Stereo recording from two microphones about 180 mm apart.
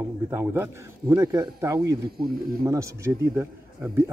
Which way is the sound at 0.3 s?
15° right (ahead or behind).